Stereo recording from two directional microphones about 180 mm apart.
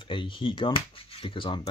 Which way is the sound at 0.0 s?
30° left (ahead or behind).